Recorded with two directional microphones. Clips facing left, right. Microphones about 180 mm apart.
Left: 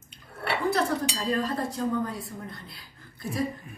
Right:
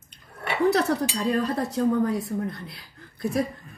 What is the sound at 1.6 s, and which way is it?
Speech, 40° right (ahead or behind).